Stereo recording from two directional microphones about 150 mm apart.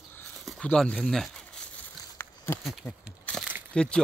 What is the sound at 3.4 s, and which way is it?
Crumpling, 10° right (ahead or behind).